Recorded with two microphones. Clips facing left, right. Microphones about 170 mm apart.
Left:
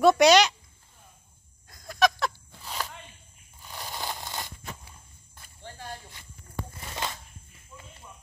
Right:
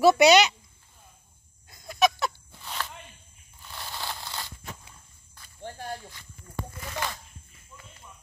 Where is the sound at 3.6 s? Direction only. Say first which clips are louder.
Left 1 dB; 15° left (ahead or behind).